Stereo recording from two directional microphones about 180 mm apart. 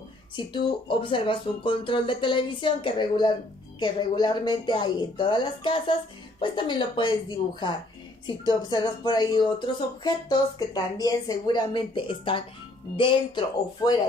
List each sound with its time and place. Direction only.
0.4 s speech: 25° left (ahead or behind)